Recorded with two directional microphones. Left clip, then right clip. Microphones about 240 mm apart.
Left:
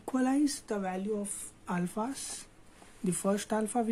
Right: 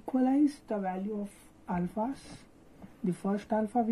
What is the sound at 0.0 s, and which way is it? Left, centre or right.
Speech, left.